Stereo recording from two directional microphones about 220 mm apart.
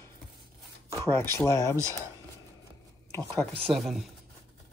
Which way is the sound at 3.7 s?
Centre (ahead or behind).